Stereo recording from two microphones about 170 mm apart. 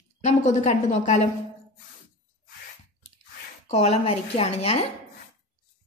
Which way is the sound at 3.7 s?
35° left (ahead or behind).